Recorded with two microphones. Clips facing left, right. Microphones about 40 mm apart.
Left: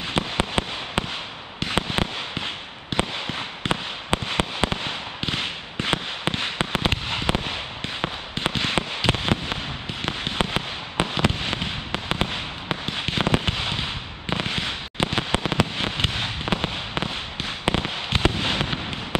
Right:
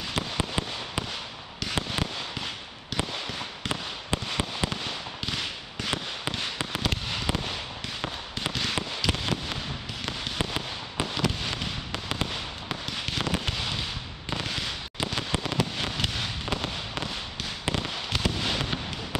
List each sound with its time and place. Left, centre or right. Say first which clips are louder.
0.0 s fireworks: left 5 dB; left